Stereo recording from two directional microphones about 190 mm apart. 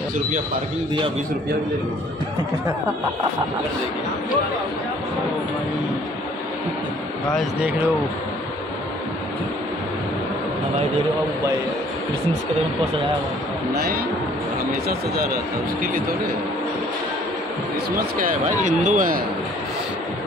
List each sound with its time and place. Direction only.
18.2 s speech: 40° right (ahead or behind)